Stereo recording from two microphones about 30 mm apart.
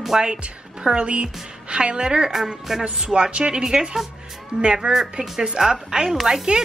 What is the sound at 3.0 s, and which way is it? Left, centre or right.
Speech, right.